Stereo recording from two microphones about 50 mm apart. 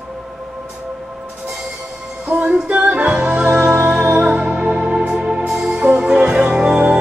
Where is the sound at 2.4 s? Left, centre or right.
Right.